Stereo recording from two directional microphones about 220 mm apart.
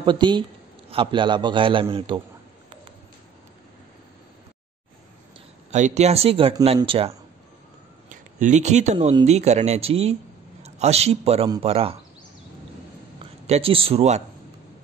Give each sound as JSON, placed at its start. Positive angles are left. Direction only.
{"t": 0.0, "sound": "speech", "side_deg": -20}
{"t": 5.7, "sound": "speech", "side_deg": -35}
{"t": 8.1, "sound": "speech", "side_deg": -35}
{"t": 13.2, "sound": "speech", "side_deg": -25}